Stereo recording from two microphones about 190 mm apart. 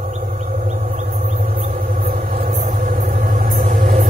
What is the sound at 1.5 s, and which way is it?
Vehicle, 50° right (ahead or behind).